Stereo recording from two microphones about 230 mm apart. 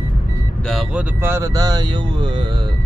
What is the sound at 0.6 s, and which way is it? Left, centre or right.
Speech, centre.